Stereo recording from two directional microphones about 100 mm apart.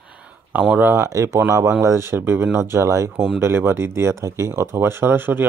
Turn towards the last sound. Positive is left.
turn(degrees=-20)  # may be behind; listen again after turning